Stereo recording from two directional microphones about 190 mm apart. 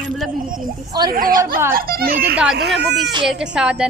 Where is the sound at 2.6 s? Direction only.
60° right (ahead or behind).